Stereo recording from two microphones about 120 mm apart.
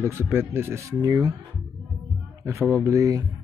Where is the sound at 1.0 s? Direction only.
30° right (ahead or behind).